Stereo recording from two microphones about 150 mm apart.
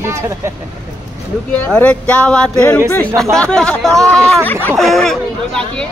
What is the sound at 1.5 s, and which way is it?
Speech, 10° left (ahead or behind).